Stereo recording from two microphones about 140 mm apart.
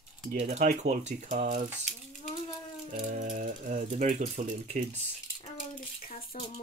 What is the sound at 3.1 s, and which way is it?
Rattle, 65° right (ahead or behind).